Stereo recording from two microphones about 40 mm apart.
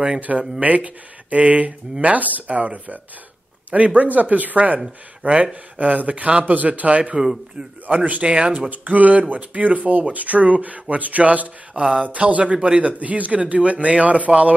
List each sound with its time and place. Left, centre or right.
0.6 s speech: right
8.5 s speech: right
11.8 s speech: right
12.1 s speech: right
13.0 s speech: right